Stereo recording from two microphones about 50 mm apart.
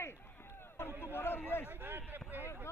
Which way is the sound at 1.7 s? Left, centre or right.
Right.